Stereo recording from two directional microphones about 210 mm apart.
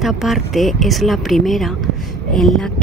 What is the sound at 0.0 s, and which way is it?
Speech, centre (ahead or behind).